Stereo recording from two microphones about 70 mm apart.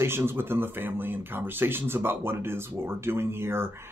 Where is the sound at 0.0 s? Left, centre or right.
Right.